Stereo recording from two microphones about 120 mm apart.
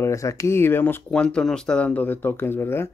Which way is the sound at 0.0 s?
25° left (ahead or behind).